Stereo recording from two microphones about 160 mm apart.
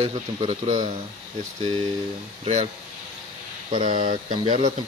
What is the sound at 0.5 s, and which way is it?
Speech, 50° right (ahead or behind).